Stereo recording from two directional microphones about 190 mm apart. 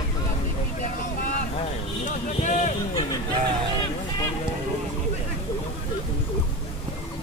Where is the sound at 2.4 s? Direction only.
40° left (ahead or behind).